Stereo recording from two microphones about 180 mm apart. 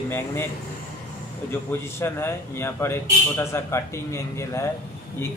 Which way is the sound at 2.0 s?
15° left (ahead or behind).